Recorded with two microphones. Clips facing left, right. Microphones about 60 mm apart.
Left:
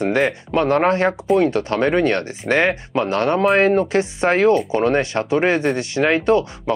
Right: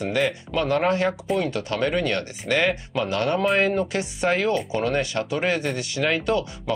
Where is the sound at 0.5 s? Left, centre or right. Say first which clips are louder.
Left 6 dB; left.